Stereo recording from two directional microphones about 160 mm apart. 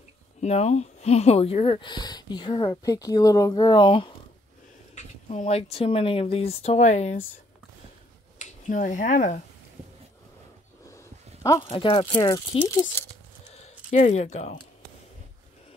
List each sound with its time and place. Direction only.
0.4 s speech: 40° left (ahead or behind)
4.9 s speech: 45° left (ahead or behind)
8.4 s speech: 50° left (ahead or behind)
11.6 s speech: 35° left (ahead or behind)
13.5 s a sound: 45° left (ahead or behind)